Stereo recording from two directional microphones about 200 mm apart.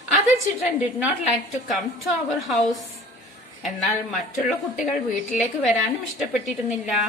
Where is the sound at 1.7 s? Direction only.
Centre (ahead or behind).